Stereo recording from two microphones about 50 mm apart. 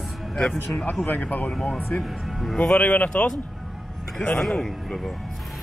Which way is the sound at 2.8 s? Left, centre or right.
Left.